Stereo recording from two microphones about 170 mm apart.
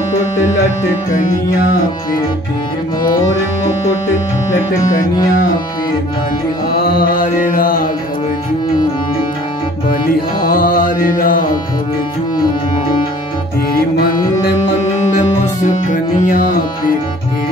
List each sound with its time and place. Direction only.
6.8 s mantra: 55° left (ahead or behind)
10.4 s music: 55° left (ahead or behind)
13.7 s music: 60° left (ahead or behind)
15.1 s music: 45° left (ahead or behind)